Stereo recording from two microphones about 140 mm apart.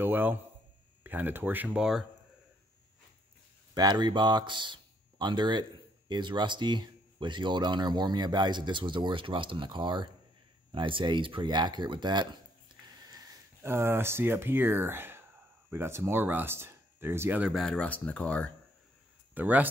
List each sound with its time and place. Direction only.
0.0 s a sound: 15° right (ahead or behind)
1.0 s speech: 15° right (ahead or behind)
3.7 s speech: 30° right (ahead or behind); by 18.5 s 10° left (ahead or behind)
19.3 s speech: 10° right (ahead or behind)